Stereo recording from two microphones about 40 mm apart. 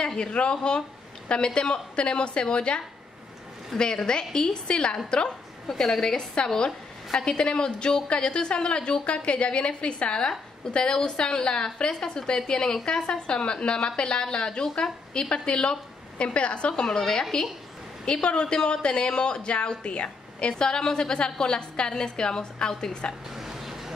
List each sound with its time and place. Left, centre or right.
0.0 s a woman's voice: left
5.7 s a woman's voice: centre
23.3 s a sound: centre